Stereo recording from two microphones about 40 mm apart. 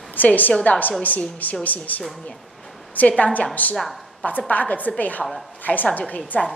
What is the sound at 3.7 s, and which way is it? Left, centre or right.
Speech, centre.